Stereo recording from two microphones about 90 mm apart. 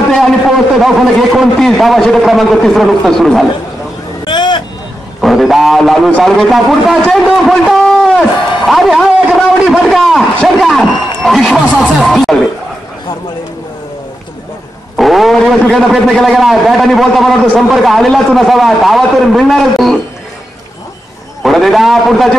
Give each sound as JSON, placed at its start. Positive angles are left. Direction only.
{"t": 0.1, "sound": "a man's voice", "side_deg": 0}
{"t": 4.3, "sound": "vehicle", "side_deg": 60}
{"t": 5.2, "sound": "a man's voice", "side_deg": 0}
{"t": 15.0, "sound": "a sound", "side_deg": 0}
{"t": 15.6, "sound": "a man's voice", "side_deg": 0}
{"t": 21.4, "sound": "a man's voice", "side_deg": 0}